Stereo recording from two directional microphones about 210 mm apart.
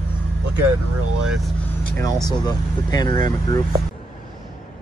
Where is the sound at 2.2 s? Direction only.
20° left (ahead or behind).